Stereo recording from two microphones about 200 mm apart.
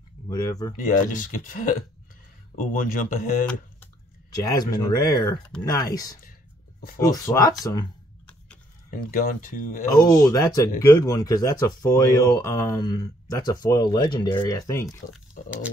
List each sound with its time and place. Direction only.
0.3 s speech: 20° left (ahead or behind)
0.7 s speech: 40° left (ahead or behind)
4.4 s speech: 20° left (ahead or behind)
7.3 s speech: 20° left (ahead or behind)
9.1 s speech: 45° left (ahead or behind)
9.9 s speech: 15° left (ahead or behind)